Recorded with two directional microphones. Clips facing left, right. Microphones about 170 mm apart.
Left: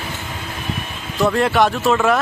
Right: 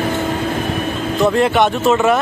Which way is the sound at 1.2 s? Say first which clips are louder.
Right 2 dB; centre (ahead or behind).